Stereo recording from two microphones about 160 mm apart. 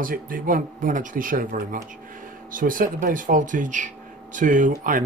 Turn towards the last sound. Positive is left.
turn(degrees=-60)  # may be behind; listen again after turning